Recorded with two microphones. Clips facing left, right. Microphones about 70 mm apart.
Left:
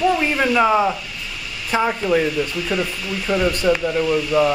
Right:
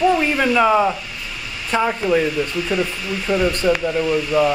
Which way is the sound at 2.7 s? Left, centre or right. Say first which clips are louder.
Right 1 dB; right.